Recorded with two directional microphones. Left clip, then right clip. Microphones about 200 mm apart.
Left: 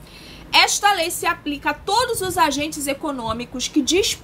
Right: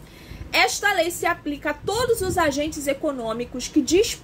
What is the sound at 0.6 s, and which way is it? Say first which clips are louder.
Speech: left 3 dB; 20° left (ahead or behind).